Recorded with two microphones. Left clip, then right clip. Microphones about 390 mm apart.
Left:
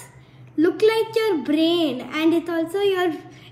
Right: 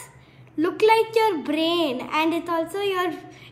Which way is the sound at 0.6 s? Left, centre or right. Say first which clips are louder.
Even; right.